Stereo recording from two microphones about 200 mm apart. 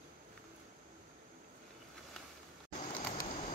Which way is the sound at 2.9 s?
45° left (ahead or behind).